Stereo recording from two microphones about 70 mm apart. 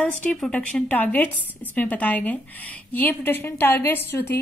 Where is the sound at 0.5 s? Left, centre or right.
Centre.